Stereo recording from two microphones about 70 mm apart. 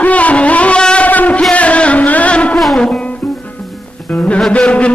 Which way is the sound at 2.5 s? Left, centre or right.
Centre.